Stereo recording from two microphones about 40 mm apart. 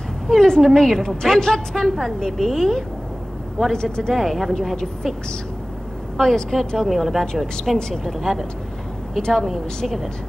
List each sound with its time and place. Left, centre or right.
0.3 s a woman's voice: centre
3.7 s speech: centre
4.1 s speech: centre
6.1 s a woman's voice: centre
6.9 s a woman's voice: centre